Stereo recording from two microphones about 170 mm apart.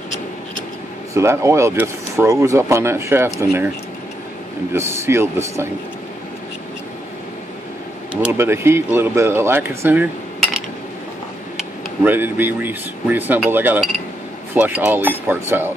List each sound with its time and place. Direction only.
1.1 s speech: 15° right (ahead or behind)
4.7 s speech: 15° right (ahead or behind)
8.1 s speech: 15° right (ahead or behind)
11.5 s speech: 10° right (ahead or behind)